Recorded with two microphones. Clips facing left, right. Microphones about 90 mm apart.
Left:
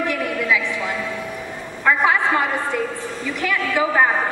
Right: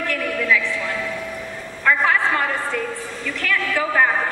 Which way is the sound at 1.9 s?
15° left (ahead or behind).